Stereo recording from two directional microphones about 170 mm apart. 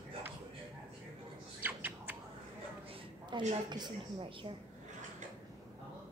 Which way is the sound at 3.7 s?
25° right (ahead or behind).